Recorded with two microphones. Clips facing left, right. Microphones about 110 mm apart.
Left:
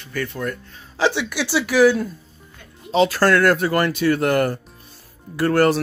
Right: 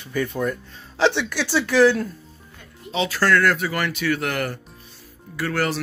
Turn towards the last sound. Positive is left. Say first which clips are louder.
# left 7 dB
turn(degrees=45)  # may be behind; listen again after turning